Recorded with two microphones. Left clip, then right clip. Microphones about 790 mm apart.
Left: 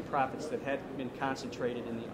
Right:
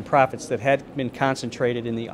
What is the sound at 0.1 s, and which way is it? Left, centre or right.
Speech, right.